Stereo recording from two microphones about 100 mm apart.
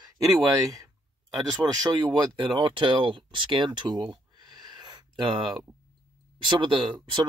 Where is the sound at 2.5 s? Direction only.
60° right (ahead or behind).